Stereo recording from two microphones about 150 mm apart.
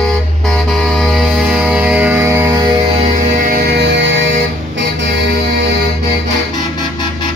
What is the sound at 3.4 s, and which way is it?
Music, 80° right.